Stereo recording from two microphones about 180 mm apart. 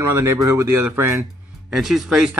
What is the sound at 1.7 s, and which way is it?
Speech, centre (ahead or behind).